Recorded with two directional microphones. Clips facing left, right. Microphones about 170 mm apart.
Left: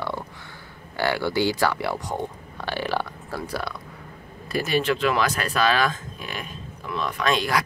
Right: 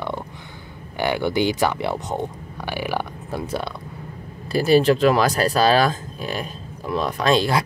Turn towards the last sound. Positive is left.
turn(degrees=-30)  # may be behind; listen again after turning